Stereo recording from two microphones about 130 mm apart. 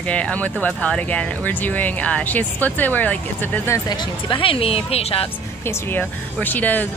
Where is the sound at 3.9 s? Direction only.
35° left (ahead or behind).